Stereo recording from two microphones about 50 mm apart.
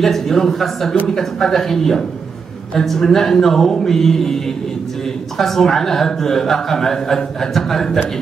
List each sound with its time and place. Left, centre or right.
0.0 s a man's voice: centre